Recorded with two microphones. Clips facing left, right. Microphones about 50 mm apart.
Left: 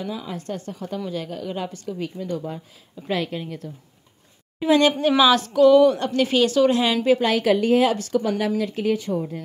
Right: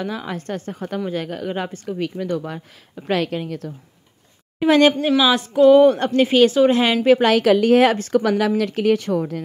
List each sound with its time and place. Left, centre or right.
0.0 s speech: right
3.1 s a woman's voice: right
4.6 s a woman's voice: right
5.2 s speech: centre
5.5 s a woman's voice: right
7.2 s a woman's voice: right
7.9 s speech: right
8.2 s speech: right